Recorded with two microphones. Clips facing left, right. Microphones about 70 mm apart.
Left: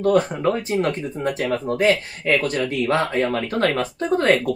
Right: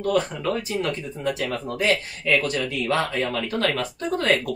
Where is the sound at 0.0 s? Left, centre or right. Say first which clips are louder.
Left 5 dB; left.